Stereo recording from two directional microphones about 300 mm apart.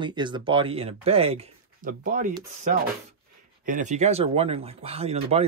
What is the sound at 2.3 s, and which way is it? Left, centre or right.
Speech, centre.